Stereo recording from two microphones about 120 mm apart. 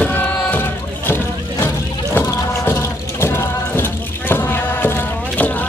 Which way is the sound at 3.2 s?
20° left (ahead or behind).